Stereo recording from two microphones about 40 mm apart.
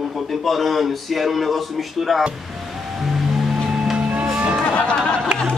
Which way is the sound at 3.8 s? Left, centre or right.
Centre.